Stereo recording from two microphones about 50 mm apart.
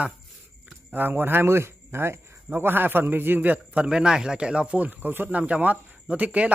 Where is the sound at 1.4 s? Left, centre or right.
Right.